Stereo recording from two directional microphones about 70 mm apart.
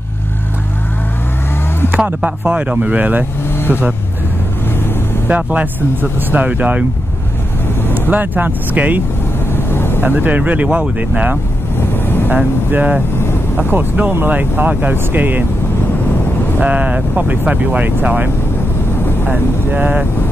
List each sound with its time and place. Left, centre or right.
1.9 s speech: right
3.5 s vehicle: left
5.3 s speech: right
8.1 s speech: right
9.5 s vehicle: left
10.0 s speech: right
16.5 s speech: centre